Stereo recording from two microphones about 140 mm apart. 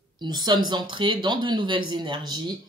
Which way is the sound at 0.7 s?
35° right (ahead or behind).